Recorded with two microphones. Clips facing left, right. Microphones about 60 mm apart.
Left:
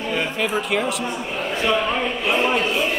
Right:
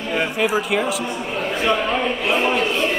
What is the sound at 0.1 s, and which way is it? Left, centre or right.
Speech, centre.